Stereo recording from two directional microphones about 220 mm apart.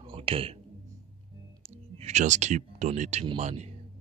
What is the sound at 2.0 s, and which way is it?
Speech, 30° right (ahead or behind).